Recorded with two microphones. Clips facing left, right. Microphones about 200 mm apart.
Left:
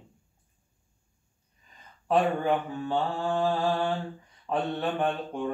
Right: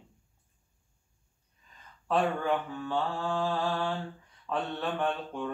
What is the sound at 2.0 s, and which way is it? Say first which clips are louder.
Mantra: left 4 dB; 15° left (ahead or behind).